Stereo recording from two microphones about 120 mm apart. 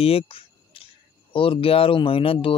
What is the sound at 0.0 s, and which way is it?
Speech, 55° left (ahead or behind).